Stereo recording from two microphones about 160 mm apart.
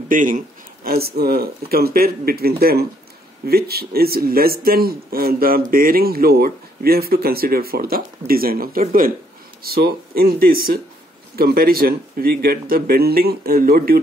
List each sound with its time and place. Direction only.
0.1 s a man's voice: 55° right (ahead or behind)
0.8 s speech: 75° right (ahead or behind)
9.6 s speech: 75° right (ahead or behind)